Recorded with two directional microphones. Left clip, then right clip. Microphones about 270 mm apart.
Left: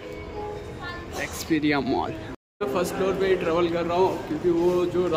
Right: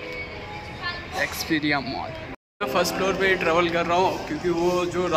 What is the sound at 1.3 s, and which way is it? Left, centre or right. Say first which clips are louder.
Speech: left 3 dB; centre.